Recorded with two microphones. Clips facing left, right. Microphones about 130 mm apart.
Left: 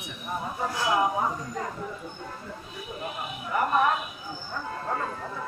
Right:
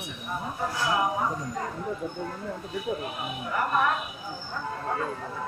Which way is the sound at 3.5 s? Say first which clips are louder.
Left 3 dB; 20° left (ahead or behind).